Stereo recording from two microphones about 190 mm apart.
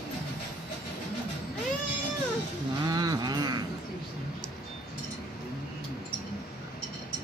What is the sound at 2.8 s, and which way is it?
Cattle, 20° right (ahead or behind).